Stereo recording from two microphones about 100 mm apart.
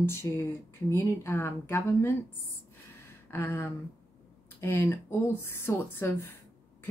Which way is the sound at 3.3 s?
25° left (ahead or behind).